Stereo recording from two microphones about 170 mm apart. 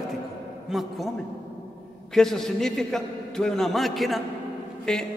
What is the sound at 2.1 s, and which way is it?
A man's voice, centre (ahead or behind).